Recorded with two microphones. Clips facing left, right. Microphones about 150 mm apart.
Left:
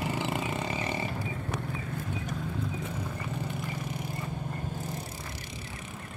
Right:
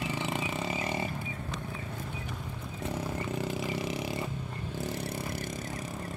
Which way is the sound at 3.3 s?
90° right.